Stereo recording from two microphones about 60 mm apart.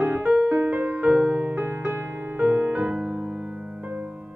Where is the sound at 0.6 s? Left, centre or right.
Right.